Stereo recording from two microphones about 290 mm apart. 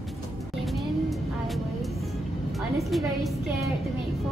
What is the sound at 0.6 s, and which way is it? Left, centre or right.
Vehicle, centre.